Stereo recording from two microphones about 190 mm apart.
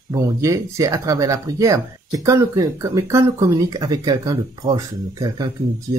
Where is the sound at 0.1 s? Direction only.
15° right (ahead or behind).